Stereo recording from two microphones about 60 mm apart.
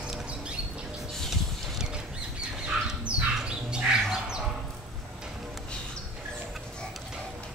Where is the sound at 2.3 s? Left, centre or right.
Centre.